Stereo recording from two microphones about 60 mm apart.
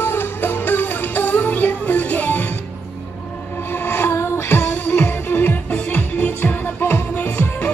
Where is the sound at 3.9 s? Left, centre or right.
Left.